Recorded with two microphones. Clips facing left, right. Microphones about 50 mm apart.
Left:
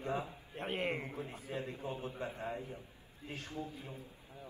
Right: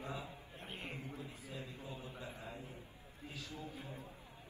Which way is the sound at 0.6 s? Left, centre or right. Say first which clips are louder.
Left 12 dB; left.